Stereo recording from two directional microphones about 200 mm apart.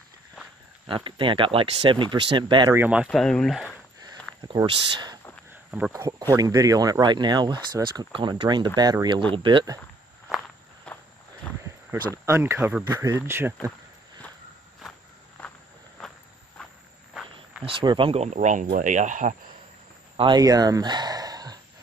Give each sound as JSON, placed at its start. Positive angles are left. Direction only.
{"t": 0.8, "sound": "speech", "side_deg": -25}
{"t": 2.7, "sound": "speech", "side_deg": -10}
{"t": 4.5, "sound": "speech", "side_deg": -25}
{"t": 5.7, "sound": "speech", "side_deg": -10}
{"t": 10.9, "sound": "walk", "side_deg": 5}
{"t": 12.3, "sound": "speech", "side_deg": -10}
{"t": 15.4, "sound": "walk", "side_deg": 5}
{"t": 17.1, "sound": "cricket", "side_deg": 0}
{"t": 17.6, "sound": "speech", "side_deg": -25}
{"t": 20.2, "sound": "speech", "side_deg": -20}